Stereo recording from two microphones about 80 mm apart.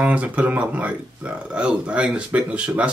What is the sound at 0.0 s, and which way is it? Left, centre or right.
Speech, centre.